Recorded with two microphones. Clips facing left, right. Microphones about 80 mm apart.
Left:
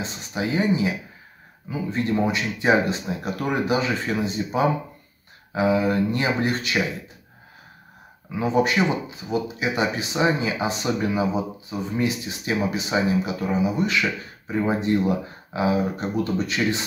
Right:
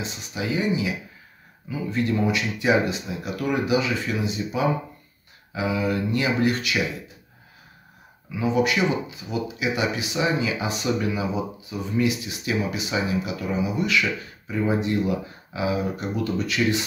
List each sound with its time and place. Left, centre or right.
0.0 s speech: left
8.3 s speech: left